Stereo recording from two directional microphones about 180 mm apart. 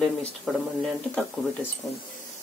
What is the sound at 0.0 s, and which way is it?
Speech, 5° left (ahead or behind).